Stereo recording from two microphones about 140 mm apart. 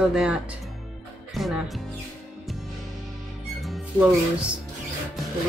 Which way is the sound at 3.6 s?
Centre (ahead or behind).